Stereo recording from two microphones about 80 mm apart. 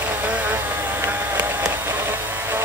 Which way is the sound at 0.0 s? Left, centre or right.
Right.